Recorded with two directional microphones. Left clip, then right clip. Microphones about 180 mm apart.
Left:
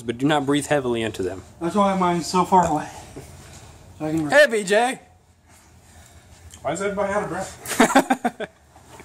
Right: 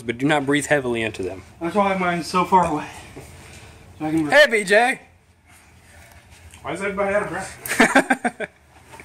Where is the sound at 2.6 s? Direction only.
20° left (ahead or behind).